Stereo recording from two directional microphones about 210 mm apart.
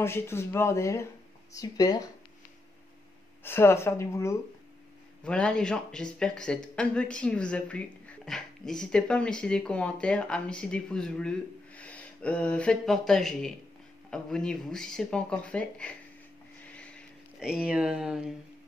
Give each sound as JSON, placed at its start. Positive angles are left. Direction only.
{"t": 0.0, "sound": "speech", "side_deg": 10}
{"t": 3.4, "sound": "speech", "side_deg": 10}
{"t": 16.7, "sound": "a sound", "side_deg": 5}